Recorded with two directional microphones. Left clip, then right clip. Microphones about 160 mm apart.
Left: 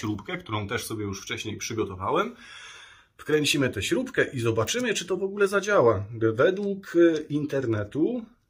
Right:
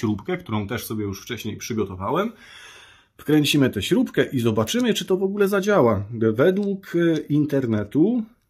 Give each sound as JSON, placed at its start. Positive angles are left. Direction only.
{"t": 0.0, "sound": "speech", "side_deg": -30}
{"t": 3.3, "sound": "speech", "side_deg": -55}